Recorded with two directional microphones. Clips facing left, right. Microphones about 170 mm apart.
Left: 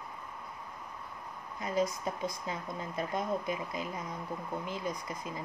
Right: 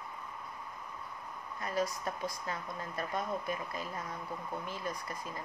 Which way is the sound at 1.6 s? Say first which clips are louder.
Left 3 dB; 20° left (ahead or behind).